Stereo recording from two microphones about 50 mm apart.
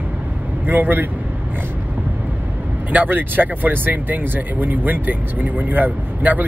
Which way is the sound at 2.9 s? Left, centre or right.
Right.